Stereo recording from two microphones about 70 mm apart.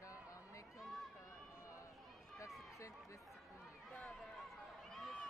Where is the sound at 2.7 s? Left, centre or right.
Left.